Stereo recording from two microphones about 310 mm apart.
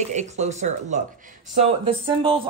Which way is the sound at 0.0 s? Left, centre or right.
Right.